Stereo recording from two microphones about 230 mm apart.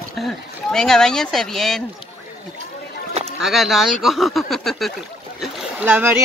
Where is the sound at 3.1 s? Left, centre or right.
Right.